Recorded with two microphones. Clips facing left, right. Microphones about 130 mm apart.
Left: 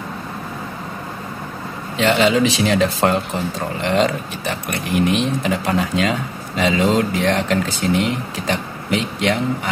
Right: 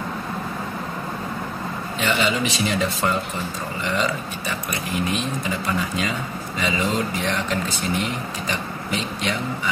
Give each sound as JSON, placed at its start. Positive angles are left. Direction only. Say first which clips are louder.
{"t": 2.0, "sound": "speech", "louder": "left 7 dB", "side_deg": 90}
{"t": 3.8, "sound": "speech", "louder": "left 6 dB", "side_deg": 75}